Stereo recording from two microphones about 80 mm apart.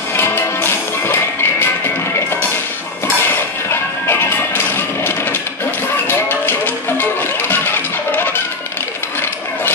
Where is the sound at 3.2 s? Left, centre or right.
Left.